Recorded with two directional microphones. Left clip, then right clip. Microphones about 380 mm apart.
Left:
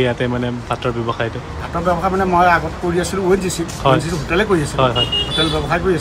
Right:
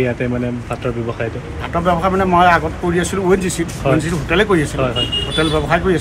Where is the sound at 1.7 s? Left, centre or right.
Centre.